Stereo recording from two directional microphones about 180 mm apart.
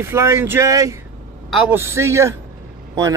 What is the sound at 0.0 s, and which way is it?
Speech, 15° right (ahead or behind).